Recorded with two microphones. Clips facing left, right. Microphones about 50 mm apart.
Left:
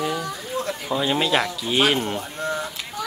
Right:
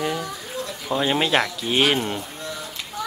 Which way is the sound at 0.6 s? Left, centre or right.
Left.